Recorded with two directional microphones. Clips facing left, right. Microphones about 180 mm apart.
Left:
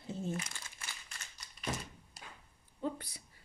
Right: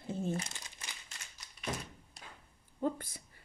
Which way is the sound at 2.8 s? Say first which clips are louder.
Right 4 dB; 45° right (ahead or behind).